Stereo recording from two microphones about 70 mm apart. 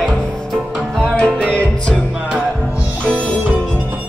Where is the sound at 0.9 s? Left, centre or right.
Centre.